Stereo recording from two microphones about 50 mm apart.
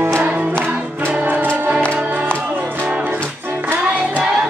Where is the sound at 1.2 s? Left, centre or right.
Right.